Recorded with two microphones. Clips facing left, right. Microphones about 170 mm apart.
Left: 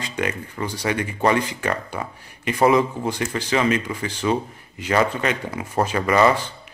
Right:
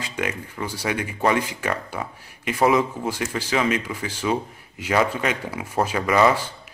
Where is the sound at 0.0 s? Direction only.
5° right (ahead or behind).